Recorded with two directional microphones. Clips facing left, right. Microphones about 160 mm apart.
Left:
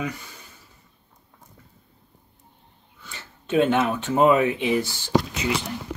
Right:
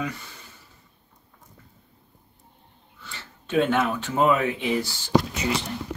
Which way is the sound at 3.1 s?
20° left (ahead or behind).